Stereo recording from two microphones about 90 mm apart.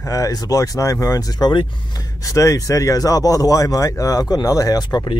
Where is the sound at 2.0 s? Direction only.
35° left (ahead or behind).